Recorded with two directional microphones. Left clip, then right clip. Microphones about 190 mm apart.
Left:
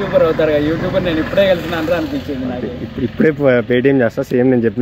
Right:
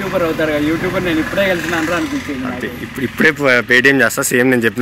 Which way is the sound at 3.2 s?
10° left (ahead or behind).